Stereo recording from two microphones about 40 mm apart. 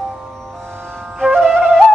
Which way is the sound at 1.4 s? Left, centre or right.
Centre.